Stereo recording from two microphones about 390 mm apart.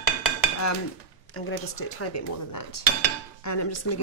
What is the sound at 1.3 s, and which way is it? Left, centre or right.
Speech, left.